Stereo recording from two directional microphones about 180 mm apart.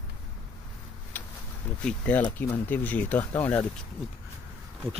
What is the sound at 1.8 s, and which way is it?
Speech, 10° left (ahead or behind).